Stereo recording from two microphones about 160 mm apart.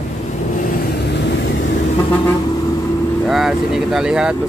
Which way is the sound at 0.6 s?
80° left.